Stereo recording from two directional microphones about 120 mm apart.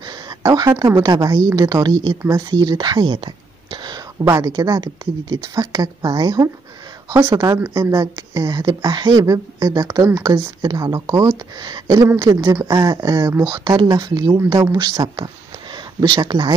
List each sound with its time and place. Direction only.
0.0 s a woman's voice: 35° right (ahead or behind)
4.2 s speech: 25° right (ahead or behind)
4.5 s speech: 35° right (ahead or behind)
10.6 s speech: 35° right (ahead or behind)